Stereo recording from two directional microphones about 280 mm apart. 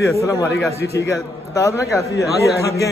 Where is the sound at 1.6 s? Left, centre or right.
Centre.